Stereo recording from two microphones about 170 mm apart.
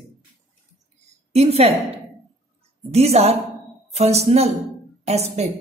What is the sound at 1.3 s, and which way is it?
Speech, 40° right (ahead or behind).